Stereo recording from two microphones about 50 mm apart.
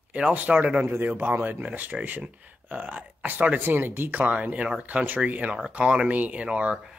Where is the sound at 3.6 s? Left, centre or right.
Right.